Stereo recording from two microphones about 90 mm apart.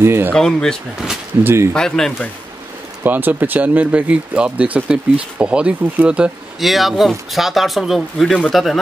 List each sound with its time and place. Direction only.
0.0 s speech: 25° right (ahead or behind)
0.3 s speech: 10° left (ahead or behind)
1.4 s speech: 25° right (ahead or behind)
1.7 s speech: 5° left (ahead or behind)
3.0 s speech: 20° right (ahead or behind)
6.6 s speech: centre (ahead or behind)